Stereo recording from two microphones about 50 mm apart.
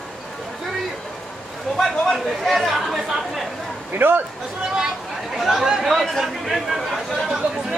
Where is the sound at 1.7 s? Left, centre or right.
Centre.